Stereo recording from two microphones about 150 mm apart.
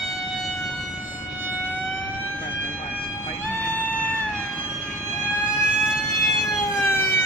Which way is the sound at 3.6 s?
10° left (ahead or behind).